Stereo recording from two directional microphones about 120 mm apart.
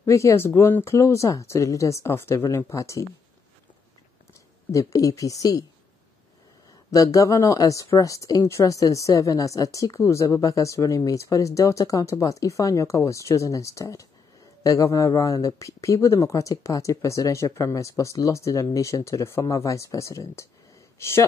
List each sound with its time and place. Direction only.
0.0 s speech: 25° left (ahead or behind)
4.7 s speech: 25° left (ahead or behind)
6.9 s speech: 30° left (ahead or behind)